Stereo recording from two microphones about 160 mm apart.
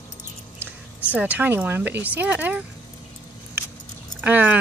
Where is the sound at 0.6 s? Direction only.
10° right (ahead or behind).